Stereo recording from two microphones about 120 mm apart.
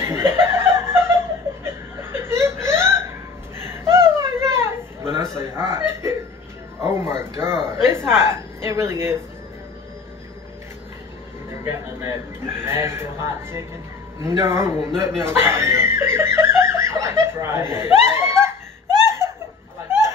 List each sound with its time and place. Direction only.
0.0 s chuckle: 20° right (ahead or behind)
3.6 s a sound: 20° right (ahead or behind)
11.6 s speech: 25° right (ahead or behind)
19.0 s laughter: 25° right (ahead or behind)
19.9 s snicker: 20° right (ahead or behind)